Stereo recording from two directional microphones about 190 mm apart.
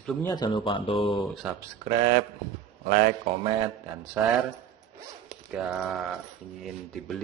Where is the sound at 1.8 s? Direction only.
20° right (ahead or behind).